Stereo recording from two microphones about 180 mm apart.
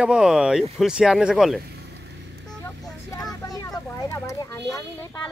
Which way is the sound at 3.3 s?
20° left (ahead or behind).